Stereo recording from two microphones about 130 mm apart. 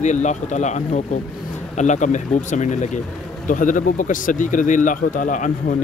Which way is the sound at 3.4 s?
90° left.